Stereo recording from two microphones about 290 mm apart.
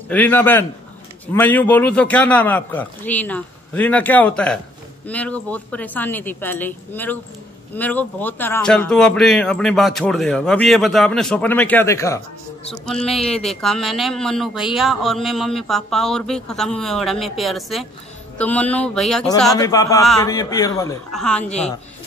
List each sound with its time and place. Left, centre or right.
0.1 s a woman's voice: centre
19.5 s a woman's voice: centre
21.4 s speech: left